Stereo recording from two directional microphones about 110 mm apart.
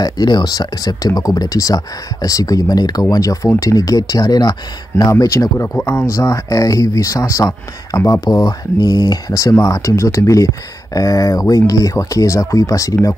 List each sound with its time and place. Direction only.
0.0 s speech: 40° left (ahead or behind)